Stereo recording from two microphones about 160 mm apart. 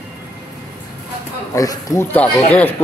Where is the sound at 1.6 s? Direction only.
20° left (ahead or behind).